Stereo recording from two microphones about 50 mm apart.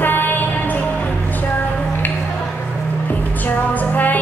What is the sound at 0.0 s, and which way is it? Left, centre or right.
Music, left.